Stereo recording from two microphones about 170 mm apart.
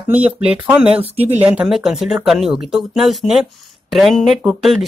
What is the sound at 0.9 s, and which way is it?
Speech, 35° right (ahead or behind).